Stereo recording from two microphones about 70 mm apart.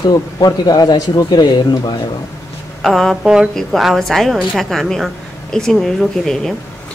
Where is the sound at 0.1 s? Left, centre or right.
Left.